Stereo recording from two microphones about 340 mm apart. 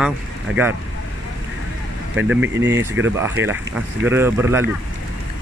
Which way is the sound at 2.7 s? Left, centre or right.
Centre.